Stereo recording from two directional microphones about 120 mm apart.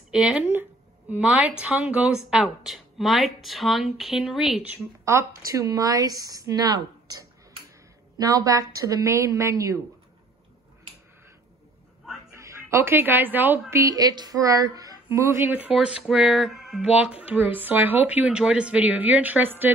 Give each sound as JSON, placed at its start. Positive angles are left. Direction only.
{"t": 0.1, "sound": "speech", "side_deg": -10}
{"t": 5.0, "sound": "a woman's voice", "side_deg": -25}
{"t": 8.3, "sound": "a woman's voice", "side_deg": -30}
{"t": 12.3, "sound": "a woman's voice", "side_deg": -25}